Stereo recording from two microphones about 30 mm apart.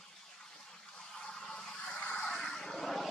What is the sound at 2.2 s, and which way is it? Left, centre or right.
Vehicle, centre.